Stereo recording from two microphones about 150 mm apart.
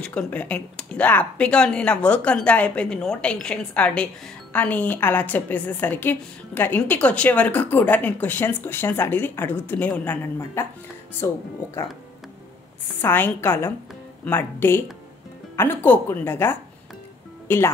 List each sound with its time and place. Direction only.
0.0 s speech: 5° left (ahead or behind)
13.0 s speech: 15° left (ahead or behind)